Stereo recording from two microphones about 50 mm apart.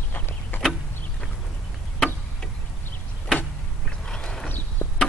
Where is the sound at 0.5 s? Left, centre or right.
Left.